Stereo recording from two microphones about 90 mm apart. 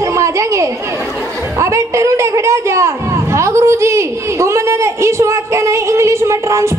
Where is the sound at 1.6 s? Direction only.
35° right (ahead or behind).